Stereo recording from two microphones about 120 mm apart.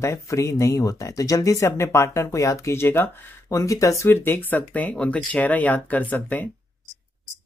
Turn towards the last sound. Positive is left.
turn(degrees=15)  # may be behind; listen again after turning